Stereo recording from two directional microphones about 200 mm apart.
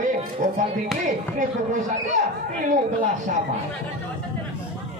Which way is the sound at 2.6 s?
40° right (ahead or behind).